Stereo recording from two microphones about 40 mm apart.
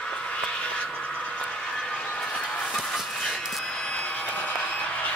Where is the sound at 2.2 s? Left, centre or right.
Left.